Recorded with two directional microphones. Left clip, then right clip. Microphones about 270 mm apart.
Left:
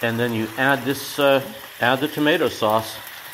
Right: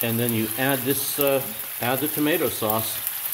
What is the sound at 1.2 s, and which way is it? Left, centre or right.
Speech, centre.